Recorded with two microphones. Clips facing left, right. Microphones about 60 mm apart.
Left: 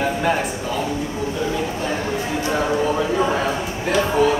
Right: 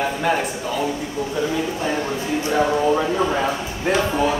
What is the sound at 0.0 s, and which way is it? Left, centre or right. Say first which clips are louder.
Speech: left 1 dB; centre.